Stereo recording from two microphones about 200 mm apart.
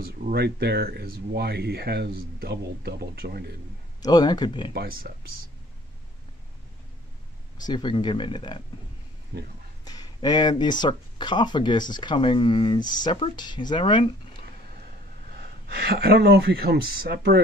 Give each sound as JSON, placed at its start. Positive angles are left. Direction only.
{"t": 0.0, "sound": "speech", "side_deg": -50}
{"t": 4.0, "sound": "speech", "side_deg": 20}
{"t": 4.7, "sound": "speech", "side_deg": -50}
{"t": 7.6, "sound": "speech", "side_deg": 20}
{"t": 9.8, "sound": "speech", "side_deg": 20}
{"t": 15.8, "sound": "speech", "side_deg": -50}